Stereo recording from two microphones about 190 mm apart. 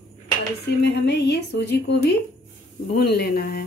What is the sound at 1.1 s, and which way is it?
Speech, 60° left (ahead or behind).